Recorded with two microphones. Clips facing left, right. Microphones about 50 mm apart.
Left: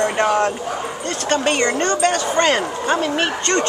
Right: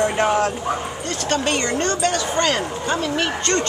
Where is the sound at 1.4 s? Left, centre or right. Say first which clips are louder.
Left 4 dB; left.